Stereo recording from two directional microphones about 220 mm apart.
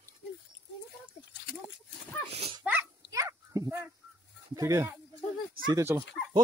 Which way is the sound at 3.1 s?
15° right (ahead or behind).